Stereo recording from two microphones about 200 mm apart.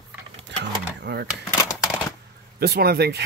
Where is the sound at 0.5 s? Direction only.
60° right (ahead or behind).